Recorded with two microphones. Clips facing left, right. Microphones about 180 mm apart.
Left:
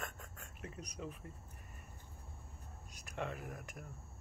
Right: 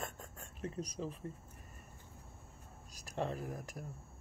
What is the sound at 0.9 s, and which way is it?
Speech, 30° right (ahead or behind).